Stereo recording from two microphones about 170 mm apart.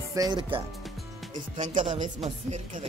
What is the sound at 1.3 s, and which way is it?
Speech, 45° right (ahead or behind).